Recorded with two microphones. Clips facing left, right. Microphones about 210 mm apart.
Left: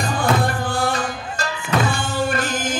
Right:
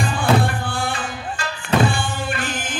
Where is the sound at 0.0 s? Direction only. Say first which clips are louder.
Right 1 dB; 40° left (ahead or behind).